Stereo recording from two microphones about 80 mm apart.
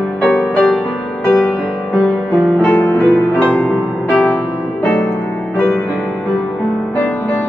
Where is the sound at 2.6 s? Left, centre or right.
Left.